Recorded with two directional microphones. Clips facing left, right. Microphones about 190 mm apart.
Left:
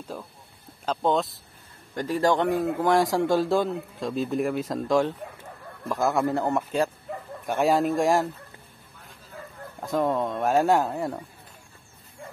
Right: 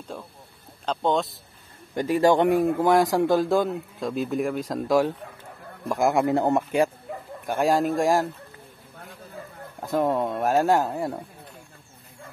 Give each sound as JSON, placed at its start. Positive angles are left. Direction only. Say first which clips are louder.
{"t": 0.1, "sound": "a man's voice", "louder": "even", "side_deg": 5}
{"t": 2.9, "sound": "a man's voice", "louder": "right 1 dB", "side_deg": 0}
{"t": 7.4, "sound": "speech", "louder": "even", "side_deg": 0}
{"t": 9.8, "sound": "speech", "louder": "right 1 dB", "side_deg": -5}